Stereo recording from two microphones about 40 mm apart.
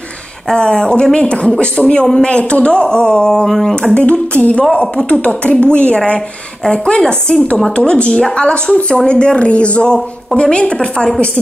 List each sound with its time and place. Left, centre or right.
0.5 s speech: centre
3.4 s a sound: centre
3.9 s a sound: left
5.5 s speech: left
6.6 s speech: centre
7.2 s speech: left